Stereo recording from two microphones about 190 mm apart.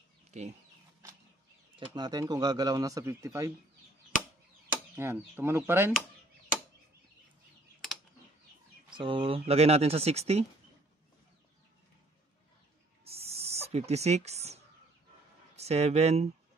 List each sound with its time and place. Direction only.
0.3 s speech: 35° right (ahead or behind)
2.0 s speech: 20° right (ahead or behind)
4.9 s speech: 10° right (ahead or behind)
8.9 s speech: 25° right (ahead or behind)
13.0 s a sound: 30° right (ahead or behind)
15.5 s speech: 35° right (ahead or behind)